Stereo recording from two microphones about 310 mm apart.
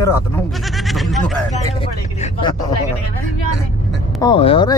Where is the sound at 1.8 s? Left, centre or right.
Centre.